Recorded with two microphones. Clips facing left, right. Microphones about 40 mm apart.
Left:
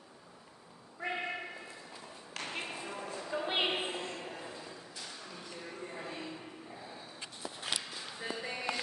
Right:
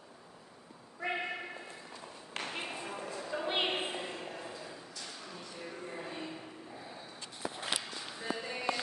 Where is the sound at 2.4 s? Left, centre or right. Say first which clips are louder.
Right 1 dB; centre.